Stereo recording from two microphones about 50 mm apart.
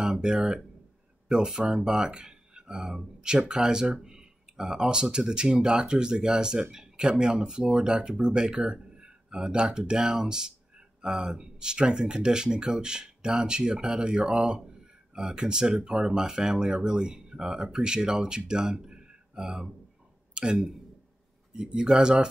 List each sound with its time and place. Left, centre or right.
0.0 s speech: centre
20.4 s a sound: centre
21.5 s speech: centre